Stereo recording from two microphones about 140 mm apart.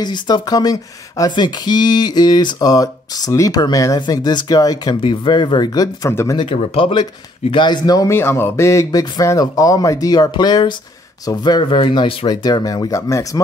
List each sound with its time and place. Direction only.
0.0 s speech: 30° left (ahead or behind)
6.4 s speech: 45° left (ahead or behind); by 13.4 s 25° left (ahead or behind)